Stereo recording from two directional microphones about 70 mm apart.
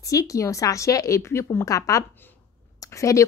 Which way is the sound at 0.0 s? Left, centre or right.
Left.